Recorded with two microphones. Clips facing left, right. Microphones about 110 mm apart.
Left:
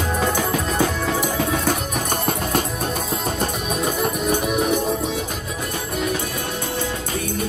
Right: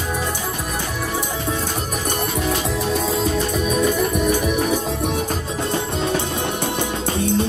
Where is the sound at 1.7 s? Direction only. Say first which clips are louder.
Left 2 dB; 50° left (ahead or behind).